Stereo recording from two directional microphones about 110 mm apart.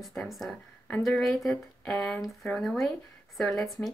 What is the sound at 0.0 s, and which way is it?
Speech, centre (ahead or behind).